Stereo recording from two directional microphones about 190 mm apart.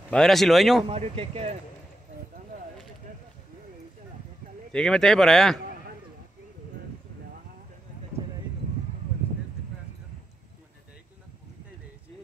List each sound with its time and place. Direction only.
0.1 s speech: centre (ahead or behind)
0.8 s speech: 30° right (ahead or behind)
4.7 s speech: 5° left (ahead or behind)